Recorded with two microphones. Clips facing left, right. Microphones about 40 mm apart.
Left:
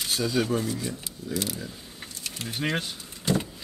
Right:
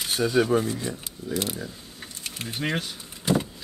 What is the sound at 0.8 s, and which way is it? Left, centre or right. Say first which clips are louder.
Speech: right 1 dB; right.